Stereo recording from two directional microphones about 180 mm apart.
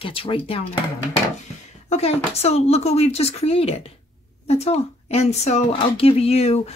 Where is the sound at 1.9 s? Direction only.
35° left (ahead or behind).